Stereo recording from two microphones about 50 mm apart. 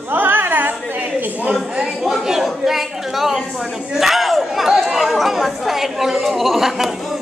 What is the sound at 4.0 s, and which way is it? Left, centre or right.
Chatter, centre.